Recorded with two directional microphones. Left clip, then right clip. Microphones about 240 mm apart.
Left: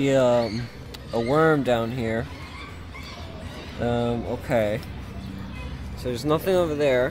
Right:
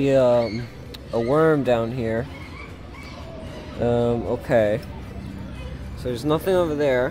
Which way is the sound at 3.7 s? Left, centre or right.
Centre.